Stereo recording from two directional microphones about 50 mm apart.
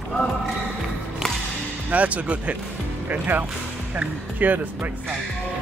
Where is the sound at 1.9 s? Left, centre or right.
Right.